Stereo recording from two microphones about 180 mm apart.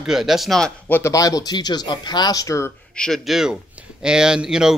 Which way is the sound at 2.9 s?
5° left (ahead or behind).